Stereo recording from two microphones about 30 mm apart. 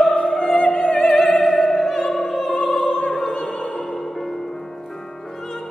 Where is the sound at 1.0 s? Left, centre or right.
Centre.